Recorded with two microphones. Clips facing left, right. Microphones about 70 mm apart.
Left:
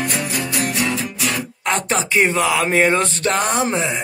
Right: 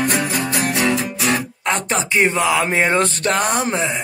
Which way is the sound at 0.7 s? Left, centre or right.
Right.